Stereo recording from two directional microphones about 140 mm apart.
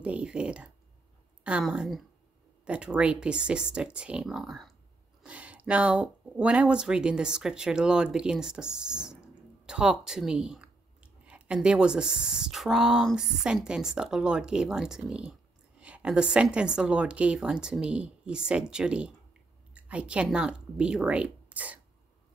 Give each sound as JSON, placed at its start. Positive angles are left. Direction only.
{"t": 0.0, "sound": "a woman's voice", "side_deg": -10}